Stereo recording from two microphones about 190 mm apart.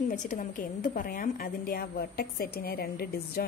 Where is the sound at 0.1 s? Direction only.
40° left (ahead or behind).